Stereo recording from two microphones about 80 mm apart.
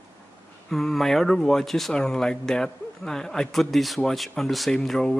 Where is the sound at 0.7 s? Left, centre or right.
Centre.